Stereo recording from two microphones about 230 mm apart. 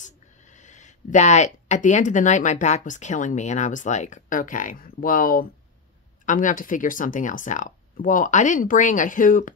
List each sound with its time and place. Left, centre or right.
0.0 s speech: left